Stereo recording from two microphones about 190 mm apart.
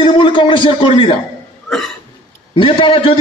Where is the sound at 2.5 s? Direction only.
30° left (ahead or behind).